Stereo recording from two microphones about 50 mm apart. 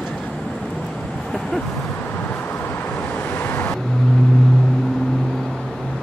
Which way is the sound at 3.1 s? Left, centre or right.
Left.